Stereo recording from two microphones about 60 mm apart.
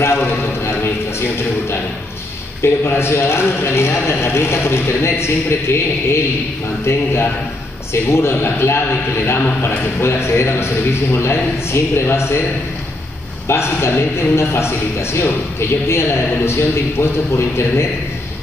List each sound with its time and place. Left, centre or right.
0.0 s a sound: left
2.6 s a man's voice: left
13.5 s a man's voice: left